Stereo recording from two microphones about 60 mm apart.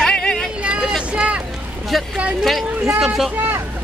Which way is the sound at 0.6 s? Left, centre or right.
Centre.